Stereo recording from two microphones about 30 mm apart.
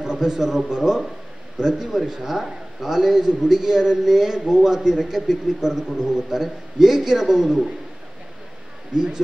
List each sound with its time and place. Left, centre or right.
0.0 s a man's voice: centre
8.9 s speech: right